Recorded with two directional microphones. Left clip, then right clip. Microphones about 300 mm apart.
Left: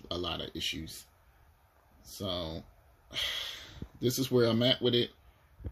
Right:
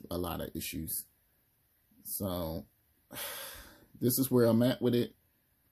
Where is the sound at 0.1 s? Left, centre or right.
Centre.